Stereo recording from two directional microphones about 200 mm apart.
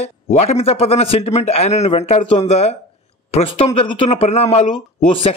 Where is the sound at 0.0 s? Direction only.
30° left (ahead or behind).